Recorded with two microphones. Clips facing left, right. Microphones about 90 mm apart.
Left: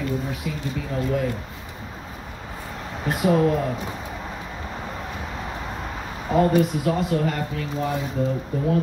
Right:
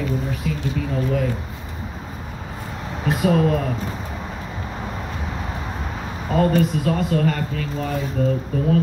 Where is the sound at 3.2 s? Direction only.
10° left (ahead or behind).